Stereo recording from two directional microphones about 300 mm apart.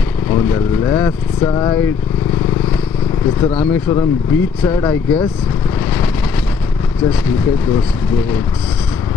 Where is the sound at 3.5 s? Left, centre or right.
Centre.